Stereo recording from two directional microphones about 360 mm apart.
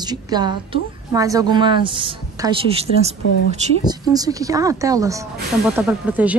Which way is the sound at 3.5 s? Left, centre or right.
Centre.